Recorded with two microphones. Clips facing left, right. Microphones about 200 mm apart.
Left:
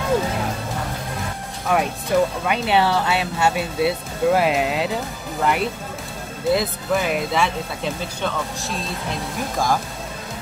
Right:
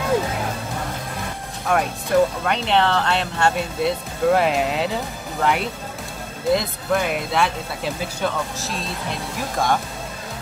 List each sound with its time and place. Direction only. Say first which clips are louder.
1.7 s speech: even; centre (ahead or behind)